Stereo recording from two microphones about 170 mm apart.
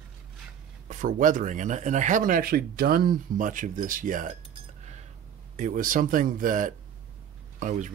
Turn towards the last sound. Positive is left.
turn(degrees=-45)  # may be behind; listen again after turning